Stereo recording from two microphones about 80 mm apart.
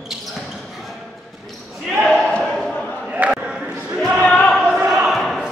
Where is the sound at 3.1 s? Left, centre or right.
Centre.